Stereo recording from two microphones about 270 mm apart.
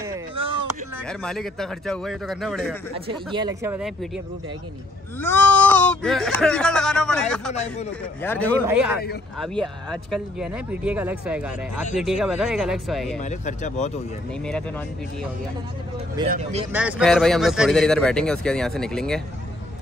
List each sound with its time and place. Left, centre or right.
1.0 s speech: centre
2.9 s speech: centre
5.2 s speech: centre
8.6 s speech: centre
13.2 s speech: left
14.4 s speech: centre
16.3 s speech: right
16.7 s speech: centre